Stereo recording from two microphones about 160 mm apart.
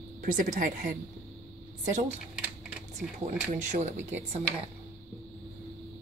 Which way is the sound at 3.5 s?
50° right (ahead or behind).